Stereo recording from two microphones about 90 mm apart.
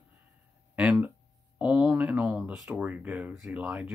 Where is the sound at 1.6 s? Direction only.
15° right (ahead or behind).